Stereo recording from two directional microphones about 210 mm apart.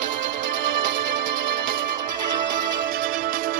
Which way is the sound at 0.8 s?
40° right (ahead or behind).